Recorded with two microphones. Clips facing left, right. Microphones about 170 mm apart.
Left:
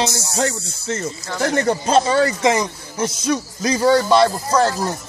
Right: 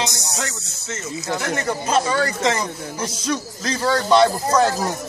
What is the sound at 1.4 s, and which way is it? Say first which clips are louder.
Speech: left 9 dB; 35° left (ahead or behind).